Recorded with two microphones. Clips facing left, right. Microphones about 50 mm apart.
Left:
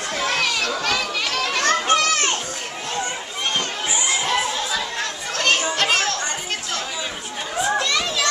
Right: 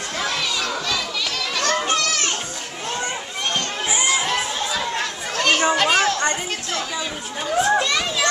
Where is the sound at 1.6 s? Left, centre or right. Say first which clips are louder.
Left 2 dB; left.